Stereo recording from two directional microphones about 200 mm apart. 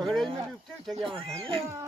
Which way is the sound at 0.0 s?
Centre (ahead or behind).